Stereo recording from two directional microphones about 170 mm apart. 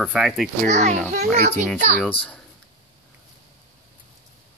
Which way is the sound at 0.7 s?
45° right (ahead or behind).